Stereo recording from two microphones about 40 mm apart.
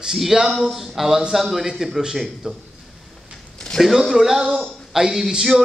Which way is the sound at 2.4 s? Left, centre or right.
Right.